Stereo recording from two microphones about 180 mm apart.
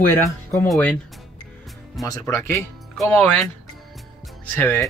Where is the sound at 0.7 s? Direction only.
10° left (ahead or behind).